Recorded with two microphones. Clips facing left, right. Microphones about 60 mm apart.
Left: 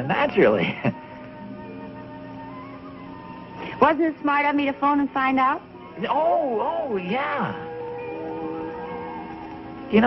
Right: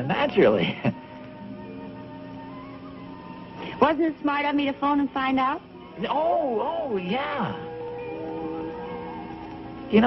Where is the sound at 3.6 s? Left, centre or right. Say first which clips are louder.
Left 3 dB; left.